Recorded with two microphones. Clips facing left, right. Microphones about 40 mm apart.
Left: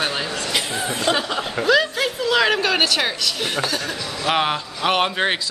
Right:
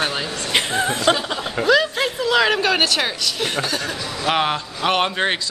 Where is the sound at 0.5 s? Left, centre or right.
Right.